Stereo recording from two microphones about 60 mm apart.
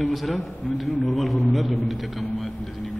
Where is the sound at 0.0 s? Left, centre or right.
Centre.